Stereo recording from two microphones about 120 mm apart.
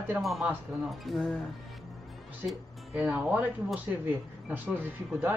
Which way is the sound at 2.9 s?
15° right (ahead or behind).